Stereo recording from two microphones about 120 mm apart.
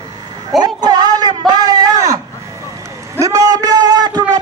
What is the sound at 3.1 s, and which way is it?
A man's voice, 30° right (ahead or behind).